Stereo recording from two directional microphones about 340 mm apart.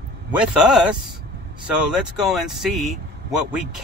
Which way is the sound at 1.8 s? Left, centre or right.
Centre.